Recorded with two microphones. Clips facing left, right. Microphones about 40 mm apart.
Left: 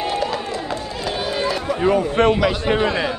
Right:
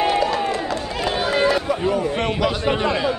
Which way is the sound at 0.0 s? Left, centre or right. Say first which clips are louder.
Right 4 dB; right.